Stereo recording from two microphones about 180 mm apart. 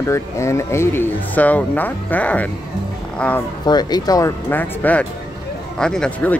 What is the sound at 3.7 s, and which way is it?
Speech, 20° left (ahead or behind).